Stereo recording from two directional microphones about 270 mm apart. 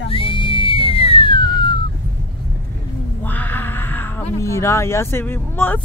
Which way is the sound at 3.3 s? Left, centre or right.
Centre.